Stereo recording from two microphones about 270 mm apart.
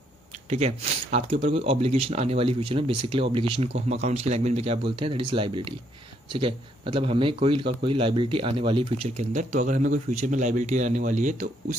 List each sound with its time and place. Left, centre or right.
0.5 s speech: right